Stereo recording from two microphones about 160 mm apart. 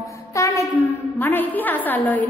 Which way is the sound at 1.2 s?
10° left (ahead or behind).